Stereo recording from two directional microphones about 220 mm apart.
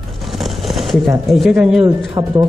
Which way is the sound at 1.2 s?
Centre (ahead or behind).